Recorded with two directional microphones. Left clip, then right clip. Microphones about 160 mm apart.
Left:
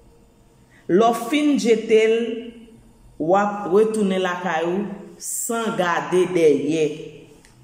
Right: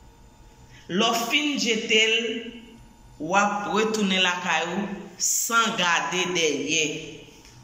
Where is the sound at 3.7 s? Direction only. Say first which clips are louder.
Left 7 dB; 45° left (ahead or behind).